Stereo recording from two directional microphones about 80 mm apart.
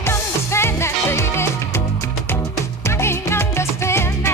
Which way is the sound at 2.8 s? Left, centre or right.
Left.